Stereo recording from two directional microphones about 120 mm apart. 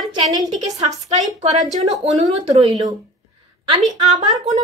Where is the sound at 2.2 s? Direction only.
60° right (ahead or behind).